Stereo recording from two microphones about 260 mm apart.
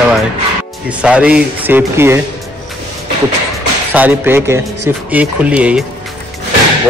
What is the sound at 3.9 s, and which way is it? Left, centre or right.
A man's voice, centre.